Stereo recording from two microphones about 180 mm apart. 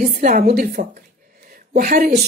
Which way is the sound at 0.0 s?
50° right (ahead or behind).